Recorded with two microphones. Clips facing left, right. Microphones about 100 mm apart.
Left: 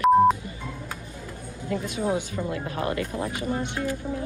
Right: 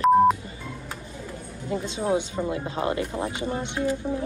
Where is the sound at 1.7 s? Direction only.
25° right (ahead or behind).